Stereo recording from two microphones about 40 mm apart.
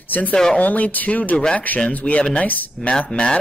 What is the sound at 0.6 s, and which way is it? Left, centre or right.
A man's voice, left.